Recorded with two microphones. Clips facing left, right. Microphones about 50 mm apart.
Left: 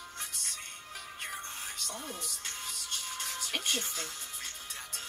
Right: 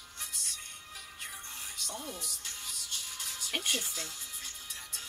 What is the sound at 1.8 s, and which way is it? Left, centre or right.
Music, left.